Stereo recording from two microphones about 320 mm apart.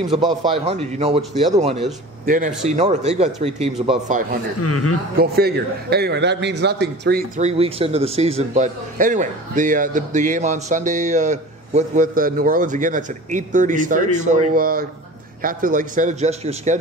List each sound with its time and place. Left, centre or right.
0.1 s a man's voice: centre
4.6 s a man's voice: left
5.2 s a man's voice: right